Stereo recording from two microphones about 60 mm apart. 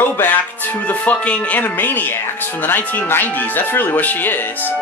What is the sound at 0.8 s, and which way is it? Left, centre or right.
Speech, left.